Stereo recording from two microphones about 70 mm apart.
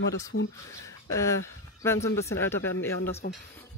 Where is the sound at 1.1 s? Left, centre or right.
Left.